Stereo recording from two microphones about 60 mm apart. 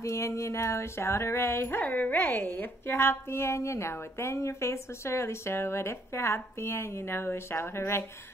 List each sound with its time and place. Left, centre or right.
0.0 s speech: left
1.8 s speech: left